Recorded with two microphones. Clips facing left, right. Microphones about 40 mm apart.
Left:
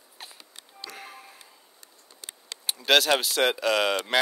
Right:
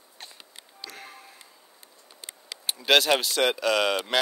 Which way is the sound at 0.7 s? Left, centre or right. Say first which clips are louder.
Left 1 dB; centre.